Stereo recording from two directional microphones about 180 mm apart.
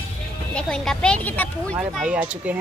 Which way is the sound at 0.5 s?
5° left (ahead or behind).